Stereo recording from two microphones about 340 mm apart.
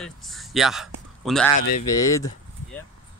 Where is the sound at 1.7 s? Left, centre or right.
Left.